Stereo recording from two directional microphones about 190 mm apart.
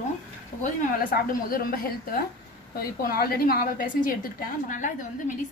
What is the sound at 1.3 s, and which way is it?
A woman's voice, 50° left (ahead or behind).